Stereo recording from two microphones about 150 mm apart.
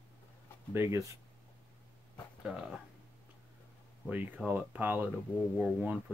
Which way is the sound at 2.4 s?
5° right (ahead or behind).